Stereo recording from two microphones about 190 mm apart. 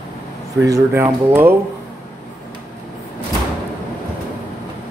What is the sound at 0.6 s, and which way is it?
Speech, 15° right (ahead or behind).